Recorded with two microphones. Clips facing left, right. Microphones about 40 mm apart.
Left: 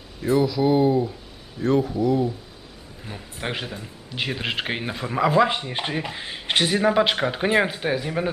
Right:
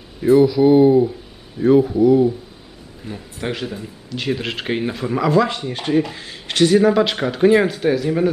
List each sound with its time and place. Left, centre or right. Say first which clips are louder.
0.2 s speech: right 8 dB; centre
3.1 s speech: right 4 dB; centre
5.3 s speech: right 2 dB; centre